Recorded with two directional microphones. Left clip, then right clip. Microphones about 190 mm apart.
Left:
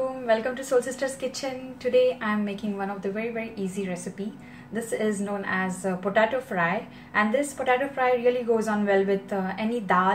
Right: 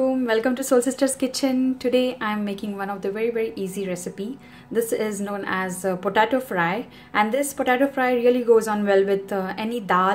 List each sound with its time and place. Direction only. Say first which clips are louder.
0.3 s a woman's voice: left 1 dB; 55° right (ahead or behind)